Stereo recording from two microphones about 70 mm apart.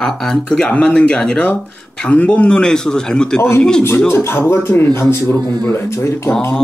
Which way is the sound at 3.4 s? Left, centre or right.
Left.